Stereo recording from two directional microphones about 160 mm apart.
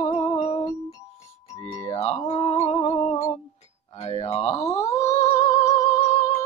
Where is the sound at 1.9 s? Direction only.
40° left (ahead or behind).